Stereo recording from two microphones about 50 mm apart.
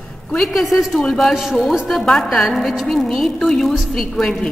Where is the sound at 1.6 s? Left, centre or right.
Centre.